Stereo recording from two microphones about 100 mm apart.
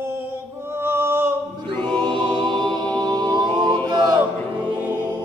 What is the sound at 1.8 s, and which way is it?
Music, 55° right (ahead or behind).